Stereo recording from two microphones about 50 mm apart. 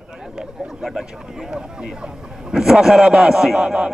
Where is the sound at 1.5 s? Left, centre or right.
Centre.